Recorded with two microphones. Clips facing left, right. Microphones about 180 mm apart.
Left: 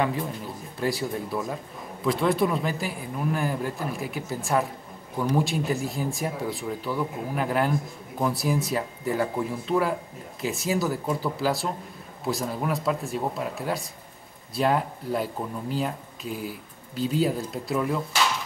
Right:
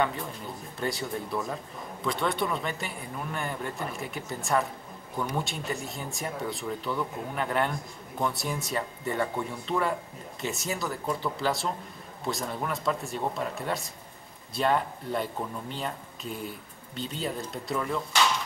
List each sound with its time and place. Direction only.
0.0 s speech: 5° left (ahead or behind)